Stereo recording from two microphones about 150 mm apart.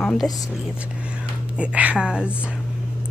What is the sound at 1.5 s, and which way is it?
Speech, 10° right (ahead or behind).